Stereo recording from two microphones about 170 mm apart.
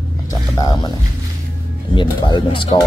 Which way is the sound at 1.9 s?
30° left (ahead or behind).